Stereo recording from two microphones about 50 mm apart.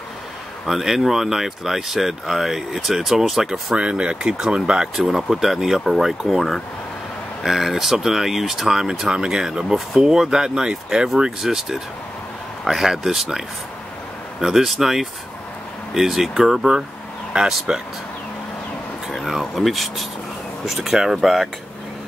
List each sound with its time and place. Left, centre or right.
0.7 s speech: centre
3.7 s speech: right
4.9 s speech: centre
14.4 s speech: centre
19.0 s speech: centre